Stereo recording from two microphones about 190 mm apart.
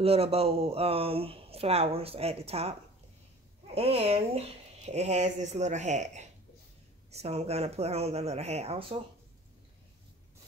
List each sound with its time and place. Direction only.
0.0 s speech: 30° right (ahead or behind)